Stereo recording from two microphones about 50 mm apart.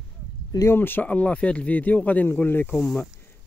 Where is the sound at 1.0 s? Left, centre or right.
Left.